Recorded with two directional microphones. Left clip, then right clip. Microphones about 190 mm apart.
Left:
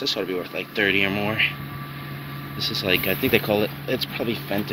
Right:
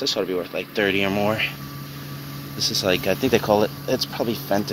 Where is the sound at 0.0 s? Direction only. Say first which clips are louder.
Right 2 dB; 20° right (ahead or behind).